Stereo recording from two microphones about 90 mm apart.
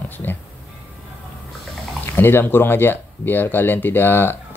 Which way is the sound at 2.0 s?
25° left (ahead or behind).